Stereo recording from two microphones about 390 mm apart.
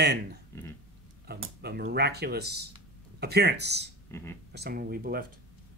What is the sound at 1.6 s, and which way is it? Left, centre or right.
Speech, right.